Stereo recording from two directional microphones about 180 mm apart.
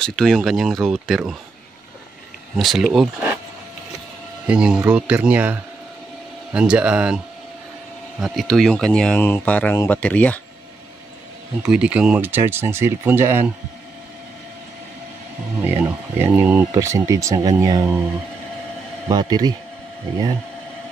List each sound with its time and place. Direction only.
0.0 s speech: 5° left (ahead or behind)
2.5 s speech: centre (ahead or behind)
4.5 s speech: 5° right (ahead or behind)
8.2 s speech: centre (ahead or behind)
11.6 s speech: 5° right (ahead or behind)
15.6 s speech: 10° right (ahead or behind)
19.0 s speech: 20° right (ahead or behind)